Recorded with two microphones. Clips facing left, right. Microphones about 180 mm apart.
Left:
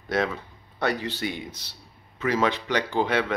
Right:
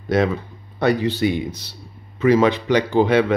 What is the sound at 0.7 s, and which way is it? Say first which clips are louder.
Speech: right 9 dB; 10° right (ahead or behind).